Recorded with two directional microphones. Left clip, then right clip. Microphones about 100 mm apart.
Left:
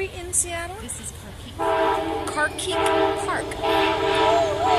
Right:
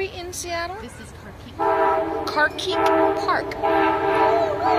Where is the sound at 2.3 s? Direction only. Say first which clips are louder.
Right 3 dB; 25° right (ahead or behind).